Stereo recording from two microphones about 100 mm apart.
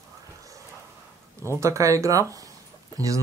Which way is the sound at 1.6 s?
30° right (ahead or behind).